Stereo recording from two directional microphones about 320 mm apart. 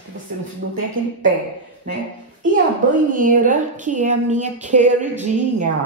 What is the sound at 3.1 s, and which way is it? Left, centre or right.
A woman's voice, right.